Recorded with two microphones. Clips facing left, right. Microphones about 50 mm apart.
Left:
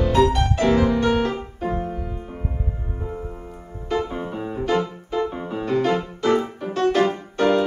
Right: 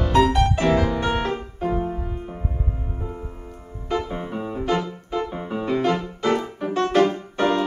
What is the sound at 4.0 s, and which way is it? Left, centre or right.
Music, centre.